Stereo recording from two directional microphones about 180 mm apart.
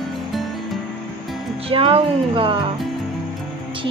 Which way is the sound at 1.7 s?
30° right (ahead or behind).